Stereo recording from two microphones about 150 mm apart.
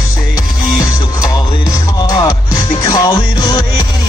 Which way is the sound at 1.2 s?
25° left (ahead or behind).